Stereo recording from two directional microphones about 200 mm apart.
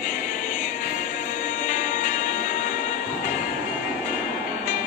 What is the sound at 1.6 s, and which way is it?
Music, 40° left (ahead or behind).